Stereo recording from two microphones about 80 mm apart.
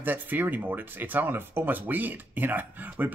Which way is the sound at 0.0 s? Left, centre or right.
Right.